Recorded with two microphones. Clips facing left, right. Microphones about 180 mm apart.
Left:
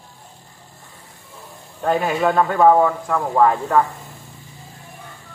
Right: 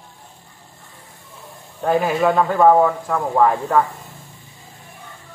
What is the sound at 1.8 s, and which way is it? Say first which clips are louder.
Speech: right 1 dB; 5° right (ahead or behind).